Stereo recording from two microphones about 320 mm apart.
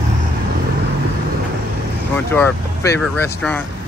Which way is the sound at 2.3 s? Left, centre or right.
Centre.